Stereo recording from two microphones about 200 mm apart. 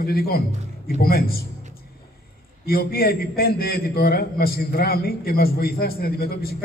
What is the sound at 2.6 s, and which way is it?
A man's voice, 50° left (ahead or behind).